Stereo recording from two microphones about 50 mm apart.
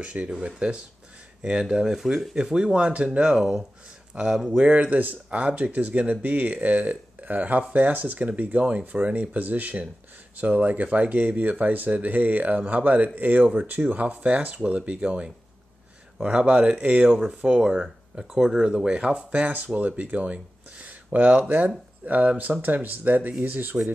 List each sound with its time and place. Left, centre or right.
0.0 s speech: right; by 2.3 s centre
2.3 s speech: centre
4.6 s speech: right
17.6 s speech: centre
18.6 s speech: centre; by 23.8 s right